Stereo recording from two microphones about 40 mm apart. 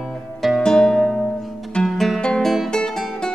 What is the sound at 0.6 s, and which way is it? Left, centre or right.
Music, centre.